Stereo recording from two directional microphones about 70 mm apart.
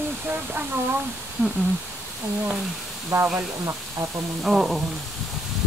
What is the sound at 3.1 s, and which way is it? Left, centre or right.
Speech, right.